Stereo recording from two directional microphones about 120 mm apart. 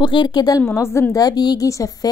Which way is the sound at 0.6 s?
25° left (ahead or behind).